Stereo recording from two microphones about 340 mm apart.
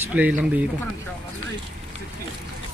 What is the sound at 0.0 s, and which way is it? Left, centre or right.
Speech, centre.